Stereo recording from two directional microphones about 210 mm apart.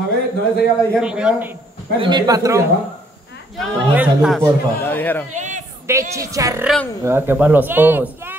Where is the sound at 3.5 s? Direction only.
5° right (ahead or behind).